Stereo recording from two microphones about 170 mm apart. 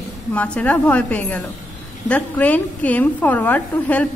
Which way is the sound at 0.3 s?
10° left (ahead or behind).